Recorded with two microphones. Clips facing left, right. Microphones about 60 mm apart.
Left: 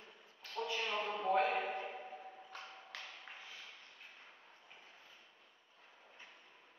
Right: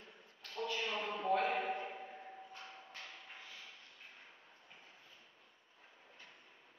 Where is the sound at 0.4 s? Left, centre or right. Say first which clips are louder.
Even; centre.